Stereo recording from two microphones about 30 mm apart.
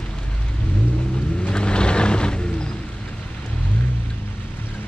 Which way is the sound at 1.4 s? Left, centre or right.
Left.